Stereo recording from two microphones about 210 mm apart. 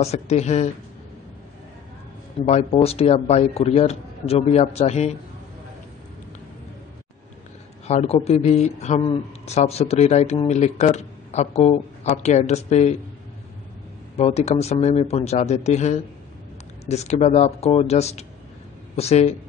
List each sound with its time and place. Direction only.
0.0 s speech: 30° left (ahead or behind)
2.4 s speech: 30° left (ahead or behind)
7.8 s speech: 30° left (ahead or behind)
14.1 s speech: 30° left (ahead or behind)